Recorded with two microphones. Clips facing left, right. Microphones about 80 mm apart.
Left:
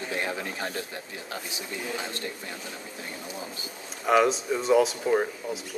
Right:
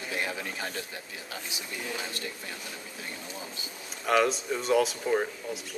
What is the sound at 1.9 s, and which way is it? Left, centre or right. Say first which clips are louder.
Speech: left 2 dB; left.